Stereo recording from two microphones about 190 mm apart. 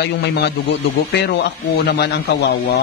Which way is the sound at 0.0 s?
60° left (ahead or behind).